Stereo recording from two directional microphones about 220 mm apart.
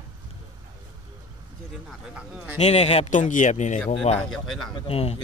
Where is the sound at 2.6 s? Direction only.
30° left (ahead or behind).